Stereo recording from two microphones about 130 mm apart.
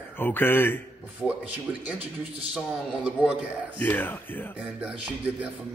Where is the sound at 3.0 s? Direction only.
10° right (ahead or behind).